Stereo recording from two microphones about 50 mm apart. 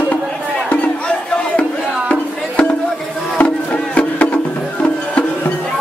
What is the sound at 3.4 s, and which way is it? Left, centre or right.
Music, left.